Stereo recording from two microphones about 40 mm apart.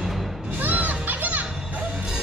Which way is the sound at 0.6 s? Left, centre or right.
Right.